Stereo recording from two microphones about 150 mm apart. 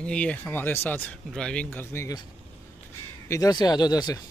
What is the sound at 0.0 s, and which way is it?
Speech, 5° left (ahead or behind).